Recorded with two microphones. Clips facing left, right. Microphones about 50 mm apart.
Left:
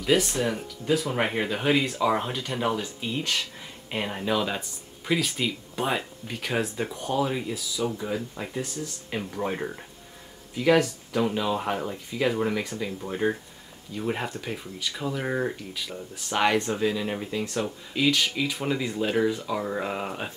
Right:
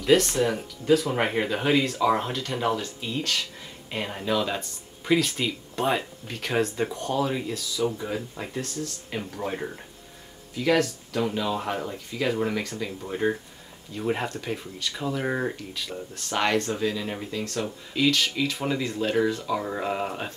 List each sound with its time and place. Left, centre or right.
0.0 s speech: centre
8.5 s speech: centre